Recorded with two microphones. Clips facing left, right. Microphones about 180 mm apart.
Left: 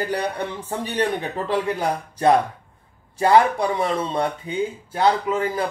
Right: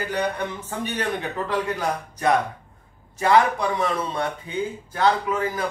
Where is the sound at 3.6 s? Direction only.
30° left (ahead or behind).